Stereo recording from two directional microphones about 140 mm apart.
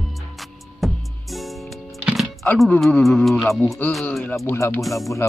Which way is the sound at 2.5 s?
5° left (ahead or behind).